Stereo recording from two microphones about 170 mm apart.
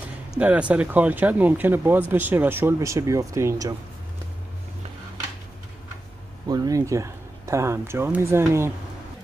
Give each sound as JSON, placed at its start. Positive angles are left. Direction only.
{"t": 0.3, "sound": "speech", "side_deg": -5}
{"t": 6.4, "sound": "speech", "side_deg": -25}